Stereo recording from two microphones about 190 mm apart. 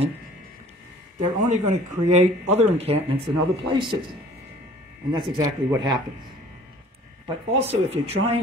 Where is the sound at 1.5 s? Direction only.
35° right (ahead or behind).